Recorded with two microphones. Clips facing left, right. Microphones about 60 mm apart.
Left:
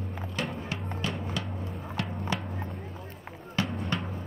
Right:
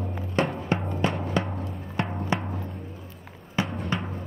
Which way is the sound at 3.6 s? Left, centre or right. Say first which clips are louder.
Right 3 dB; centre.